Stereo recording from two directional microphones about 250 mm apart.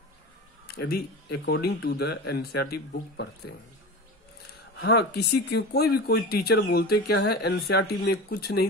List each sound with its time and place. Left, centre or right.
0.7 s speech: left
4.7 s speech: left